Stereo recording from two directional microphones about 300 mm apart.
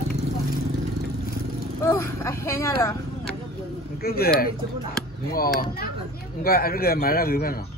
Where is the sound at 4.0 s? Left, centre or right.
Left.